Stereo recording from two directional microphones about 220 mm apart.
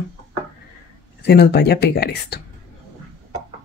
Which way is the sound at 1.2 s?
50° left (ahead or behind).